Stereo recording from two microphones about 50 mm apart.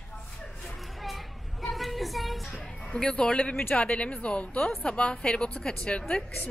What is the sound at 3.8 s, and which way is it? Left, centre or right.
A woman's voice, left.